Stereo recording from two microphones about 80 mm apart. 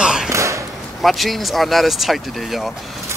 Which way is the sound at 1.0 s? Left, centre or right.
Centre.